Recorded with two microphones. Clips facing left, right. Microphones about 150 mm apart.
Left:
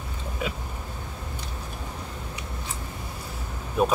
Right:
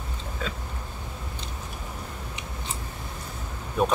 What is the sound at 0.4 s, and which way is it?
Speech, 10° left (ahead or behind).